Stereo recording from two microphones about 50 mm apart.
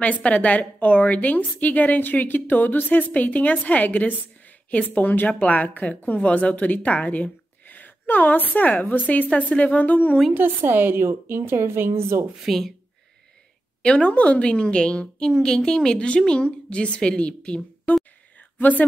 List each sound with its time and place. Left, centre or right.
0.0 s a woman's voice: left
10.3 s a woman's voice: right
12.4 s speech: centre
13.8 s a woman's voice: left
17.9 s whispering: left
18.6 s a woman's voice: left